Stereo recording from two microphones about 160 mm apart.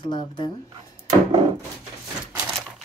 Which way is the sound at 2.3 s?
5° right (ahead or behind).